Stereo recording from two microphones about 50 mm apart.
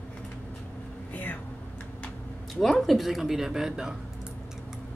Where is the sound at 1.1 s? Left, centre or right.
Left.